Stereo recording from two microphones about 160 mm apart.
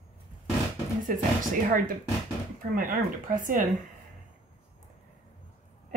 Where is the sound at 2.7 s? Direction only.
55° right (ahead or behind).